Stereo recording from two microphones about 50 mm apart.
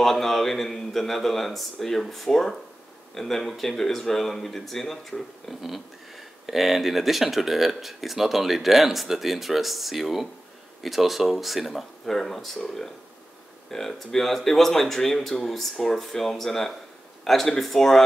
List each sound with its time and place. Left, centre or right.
0.0 s speech: centre